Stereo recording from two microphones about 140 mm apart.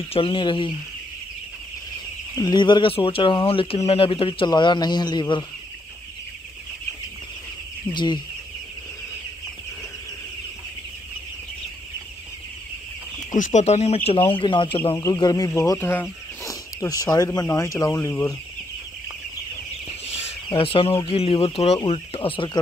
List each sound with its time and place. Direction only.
0.1 s speech: 40° left (ahead or behind)
2.3 s speech: 30° left (ahead or behind)
7.9 s speech: 35° left (ahead or behind)
13.3 s speech: 60° left (ahead or behind); by 15.0 s 40° left (ahead or behind)
15.0 s speech: 25° left (ahead or behind)
20.4 s speech: 40° left (ahead or behind)